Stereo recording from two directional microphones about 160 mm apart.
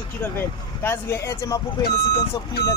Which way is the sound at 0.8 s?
15° left (ahead or behind).